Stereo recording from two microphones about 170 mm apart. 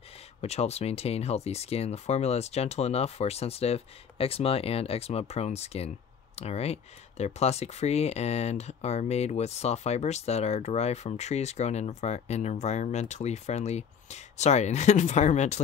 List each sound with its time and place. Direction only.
0.4 s speech: 40° left (ahead or behind)